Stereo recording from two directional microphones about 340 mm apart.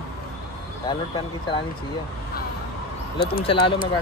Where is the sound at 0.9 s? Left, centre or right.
Centre.